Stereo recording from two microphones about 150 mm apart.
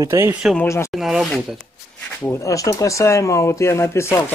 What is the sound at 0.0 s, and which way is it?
Speech, 20° right (ahead or behind).